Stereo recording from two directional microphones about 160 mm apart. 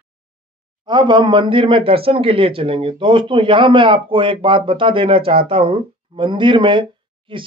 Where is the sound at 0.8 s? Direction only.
30° right (ahead or behind).